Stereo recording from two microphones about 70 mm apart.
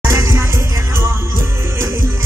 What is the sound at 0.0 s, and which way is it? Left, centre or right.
Music, right.